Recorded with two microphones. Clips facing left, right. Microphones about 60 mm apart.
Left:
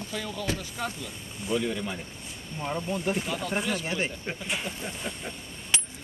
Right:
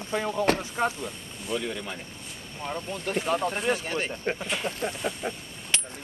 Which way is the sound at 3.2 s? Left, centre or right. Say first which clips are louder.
Right 6 dB; right.